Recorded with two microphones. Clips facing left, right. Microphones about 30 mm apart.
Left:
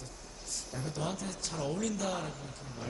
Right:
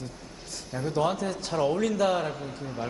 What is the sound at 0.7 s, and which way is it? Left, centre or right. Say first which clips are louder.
A man's voice: right 11 dB; right.